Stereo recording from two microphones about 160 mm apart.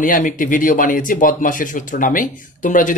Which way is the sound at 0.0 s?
55° left (ahead or behind).